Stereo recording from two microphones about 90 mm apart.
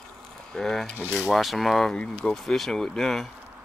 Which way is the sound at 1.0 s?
15° right (ahead or behind).